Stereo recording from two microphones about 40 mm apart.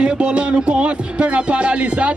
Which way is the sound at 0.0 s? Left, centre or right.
Right.